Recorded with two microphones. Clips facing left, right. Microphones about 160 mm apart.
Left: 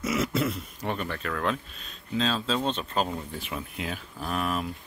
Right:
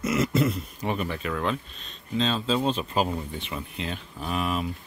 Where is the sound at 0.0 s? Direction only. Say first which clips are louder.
Right 3 dB; 5° left (ahead or behind).